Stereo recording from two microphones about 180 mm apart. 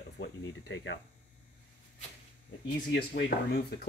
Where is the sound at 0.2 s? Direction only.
85° left.